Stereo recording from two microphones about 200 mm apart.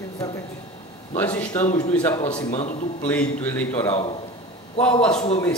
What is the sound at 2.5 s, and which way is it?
Speech, 35° left (ahead or behind).